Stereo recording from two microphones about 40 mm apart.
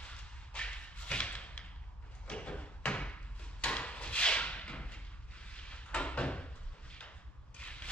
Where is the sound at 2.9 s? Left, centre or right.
Left.